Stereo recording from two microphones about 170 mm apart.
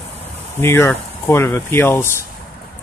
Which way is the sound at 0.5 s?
15° left (ahead or behind).